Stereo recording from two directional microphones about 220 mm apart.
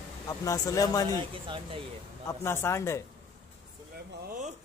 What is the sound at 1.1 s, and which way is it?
Speech, 25° right (ahead or behind).